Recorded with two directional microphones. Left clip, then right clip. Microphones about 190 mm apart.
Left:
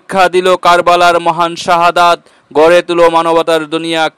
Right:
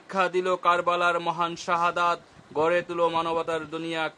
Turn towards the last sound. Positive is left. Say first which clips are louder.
# left 17 dB
turn(degrees=45)  # may be behind; listen again after turning